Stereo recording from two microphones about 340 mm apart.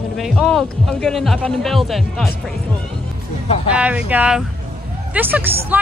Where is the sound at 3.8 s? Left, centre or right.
Centre.